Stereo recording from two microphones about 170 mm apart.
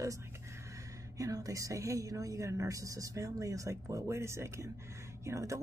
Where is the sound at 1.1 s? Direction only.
20° right (ahead or behind).